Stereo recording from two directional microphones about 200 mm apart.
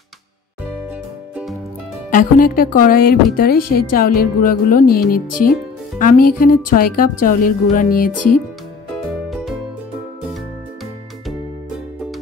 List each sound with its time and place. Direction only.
1.3 s music: centre (ahead or behind)
2.0 s music: 45° left (ahead or behind)
9.3 s music: centre (ahead or behind)